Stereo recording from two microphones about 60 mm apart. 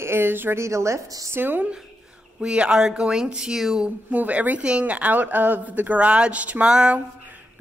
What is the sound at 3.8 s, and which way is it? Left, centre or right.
A woman's voice, right.